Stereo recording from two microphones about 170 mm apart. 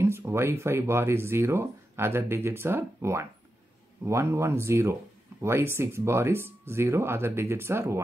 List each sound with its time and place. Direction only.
0.0 s speech: 15° right (ahead or behind)